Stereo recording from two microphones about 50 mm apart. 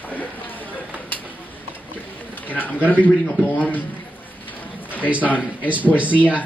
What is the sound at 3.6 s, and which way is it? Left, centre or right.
Speech, left.